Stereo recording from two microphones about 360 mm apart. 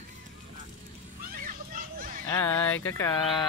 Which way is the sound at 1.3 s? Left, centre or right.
Right.